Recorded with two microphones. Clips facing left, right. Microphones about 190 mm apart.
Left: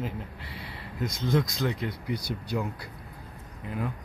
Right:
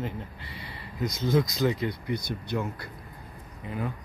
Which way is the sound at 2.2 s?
35° left (ahead or behind).